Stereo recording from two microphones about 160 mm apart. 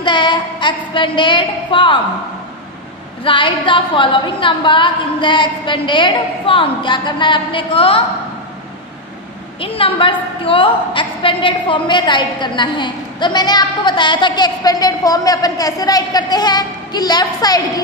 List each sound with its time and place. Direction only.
0.0 s a sound: 30° left (ahead or behind)
3.3 s a woman's voice: 30° left (ahead or behind)
9.6 s a woman's voice: 35° left (ahead or behind)